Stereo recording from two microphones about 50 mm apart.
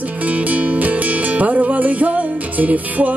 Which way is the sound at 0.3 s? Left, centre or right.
Right.